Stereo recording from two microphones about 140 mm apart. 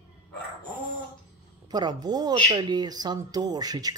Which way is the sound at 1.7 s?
30° right (ahead or behind).